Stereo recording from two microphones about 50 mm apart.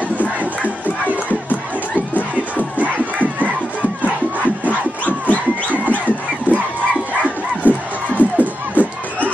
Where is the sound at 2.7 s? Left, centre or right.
Right.